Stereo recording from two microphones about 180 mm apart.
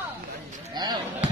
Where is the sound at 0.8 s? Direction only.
25° right (ahead or behind).